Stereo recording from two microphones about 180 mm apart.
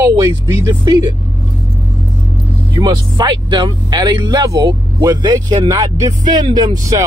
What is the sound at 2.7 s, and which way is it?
Speech, 25° right (ahead or behind).